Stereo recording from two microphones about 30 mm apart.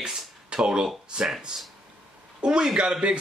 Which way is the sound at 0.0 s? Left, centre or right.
Right.